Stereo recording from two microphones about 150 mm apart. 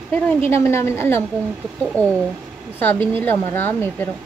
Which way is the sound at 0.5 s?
20° left (ahead or behind).